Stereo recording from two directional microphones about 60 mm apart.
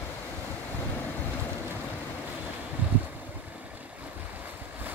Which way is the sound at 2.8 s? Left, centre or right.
Right.